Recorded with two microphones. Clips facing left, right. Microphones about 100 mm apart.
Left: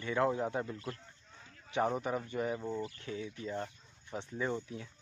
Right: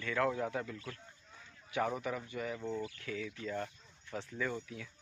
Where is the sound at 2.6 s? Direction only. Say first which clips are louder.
Left 1 dB; 15° left (ahead or behind).